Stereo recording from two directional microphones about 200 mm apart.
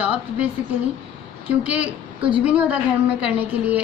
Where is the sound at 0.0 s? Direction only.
5° right (ahead or behind).